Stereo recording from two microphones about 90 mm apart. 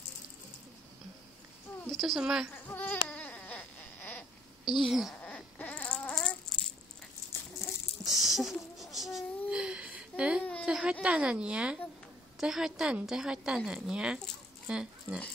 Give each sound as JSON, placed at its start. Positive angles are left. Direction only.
{"t": 1.9, "sound": "a woman's voice", "side_deg": 0}
{"t": 2.5, "sound": "a sound", "side_deg": 20}
{"t": 4.6, "sound": "speech", "side_deg": 0}
{"t": 5.2, "sound": "coin", "side_deg": 20}
{"t": 8.0, "sound": "patter", "side_deg": 0}
{"t": 8.7, "sound": "a sound", "side_deg": 0}
{"t": 10.6, "sound": "a woman's voice", "side_deg": -10}